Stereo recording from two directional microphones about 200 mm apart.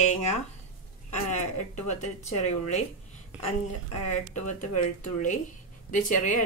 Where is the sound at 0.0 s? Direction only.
35° left (ahead or behind).